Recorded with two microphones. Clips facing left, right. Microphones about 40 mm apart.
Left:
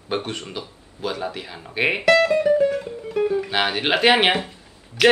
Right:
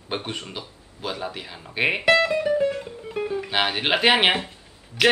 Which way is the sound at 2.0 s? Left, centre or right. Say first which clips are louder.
Left 3 dB; centre.